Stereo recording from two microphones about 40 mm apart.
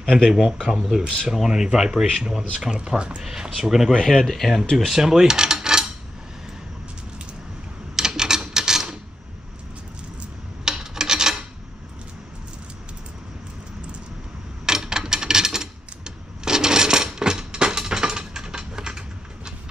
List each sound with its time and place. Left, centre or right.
0.0 s speech: centre
0.3 s speech: centre
4.1 s speech: centre
4.7 s cutlery: centre
7.9 s a sound: centre
10.6 s rub: centre
14.7 s a sound: centre